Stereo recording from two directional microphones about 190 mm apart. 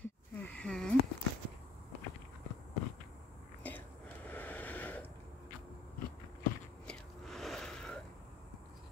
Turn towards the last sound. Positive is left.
turn(degrees=5)  # may be behind; listen again after turning